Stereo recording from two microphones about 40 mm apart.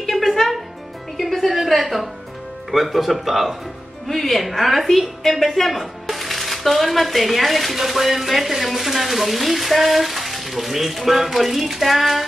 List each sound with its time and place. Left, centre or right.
0.0 s music: centre
2.7 s a woman's voice: centre